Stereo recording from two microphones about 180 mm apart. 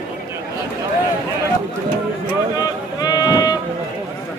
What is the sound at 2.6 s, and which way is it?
Sheep, 20° left (ahead or behind).